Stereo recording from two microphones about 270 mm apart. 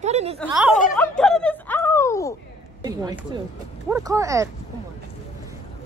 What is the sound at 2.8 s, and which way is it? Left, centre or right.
Speech, centre.